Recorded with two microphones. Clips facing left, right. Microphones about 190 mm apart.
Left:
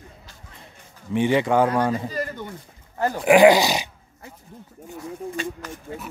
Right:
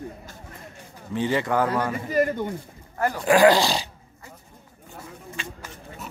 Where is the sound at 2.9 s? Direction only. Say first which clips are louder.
Left 3 dB; 20° left (ahead or behind).